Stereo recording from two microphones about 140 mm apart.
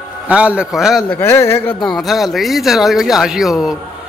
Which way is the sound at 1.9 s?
Centre (ahead or behind).